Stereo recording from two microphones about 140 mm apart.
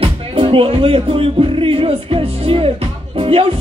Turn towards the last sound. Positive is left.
turn(degrees=-40)  # may be behind; listen again after turning